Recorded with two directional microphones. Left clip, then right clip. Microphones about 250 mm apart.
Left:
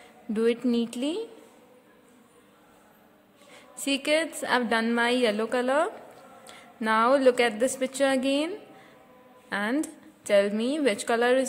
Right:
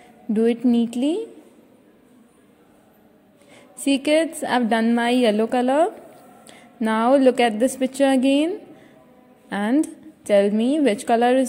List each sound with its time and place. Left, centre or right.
0.3 s a woman's voice: centre
3.5 s a woman's voice: centre